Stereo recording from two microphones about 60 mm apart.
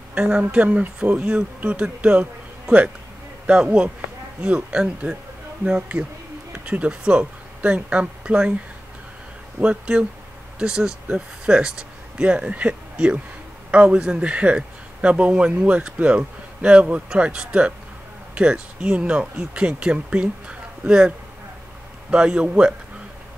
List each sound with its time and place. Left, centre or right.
0.1 s speech: centre
3.4 s speech: centre
9.6 s a man's voice: centre
22.1 s a man's voice: centre